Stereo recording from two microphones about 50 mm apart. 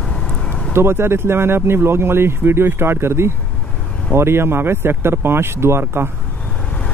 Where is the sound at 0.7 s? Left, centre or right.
Right.